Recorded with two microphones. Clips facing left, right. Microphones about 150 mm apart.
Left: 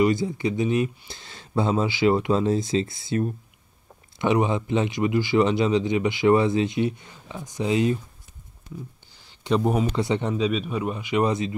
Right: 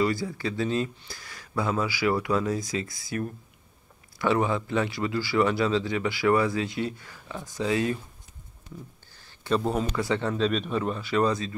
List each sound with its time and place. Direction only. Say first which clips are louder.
0.0 s speech: left 5 dB; 20° left (ahead or behind)
9.1 s a sound: left 3 dB; 15° left (ahead or behind)
9.9 s speech: left 2 dB; 20° left (ahead or behind)
10.3 s speech: left 1 dB; 5° left (ahead or behind)